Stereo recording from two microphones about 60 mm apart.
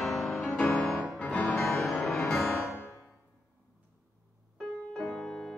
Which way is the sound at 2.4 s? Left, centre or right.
Left.